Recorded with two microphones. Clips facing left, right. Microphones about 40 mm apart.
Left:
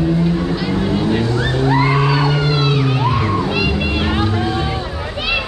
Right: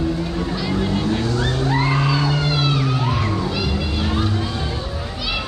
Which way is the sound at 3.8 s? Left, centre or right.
Left.